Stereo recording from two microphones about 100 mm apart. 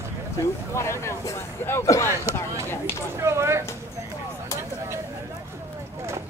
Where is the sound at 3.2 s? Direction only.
30° right (ahead or behind).